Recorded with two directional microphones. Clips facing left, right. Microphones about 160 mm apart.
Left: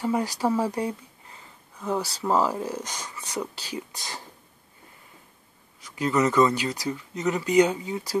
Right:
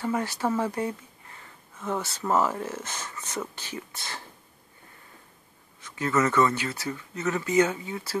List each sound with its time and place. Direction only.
0.0 s speech: 15° left (ahead or behind)
2.2 s speech: 15° left (ahead or behind)
5.8 s speech: 15° left (ahead or behind)